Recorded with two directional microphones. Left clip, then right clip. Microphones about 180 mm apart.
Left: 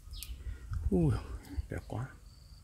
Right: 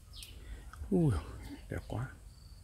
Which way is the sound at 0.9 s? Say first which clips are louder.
Even; 5° left (ahead or behind).